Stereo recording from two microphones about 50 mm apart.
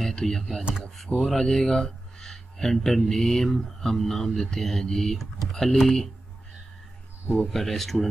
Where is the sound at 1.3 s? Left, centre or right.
Centre.